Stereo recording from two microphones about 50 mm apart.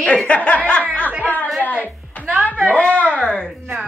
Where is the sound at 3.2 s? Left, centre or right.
Centre.